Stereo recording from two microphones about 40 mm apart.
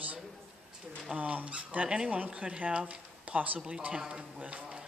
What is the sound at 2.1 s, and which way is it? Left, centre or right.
Speech, right.